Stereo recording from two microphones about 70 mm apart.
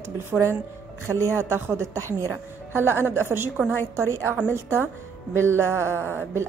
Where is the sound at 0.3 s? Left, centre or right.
Centre.